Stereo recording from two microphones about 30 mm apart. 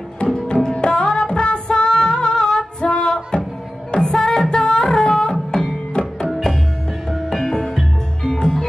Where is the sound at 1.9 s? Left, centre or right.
Centre.